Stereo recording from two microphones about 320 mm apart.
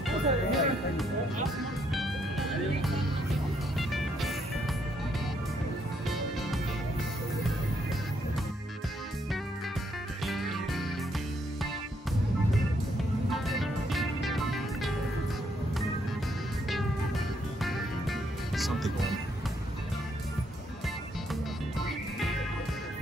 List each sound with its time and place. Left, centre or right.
0.1 s speech: centre
2.0 s music: centre
6.0 s music: centre
10.2 s music: centre
13.3 s music: centre
17.6 s music: centre
21.7 s music: centre